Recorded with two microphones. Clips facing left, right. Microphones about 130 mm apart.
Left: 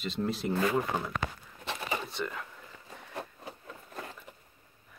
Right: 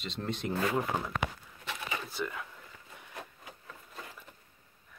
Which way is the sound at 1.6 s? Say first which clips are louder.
Left 4 dB; 25° left (ahead or behind).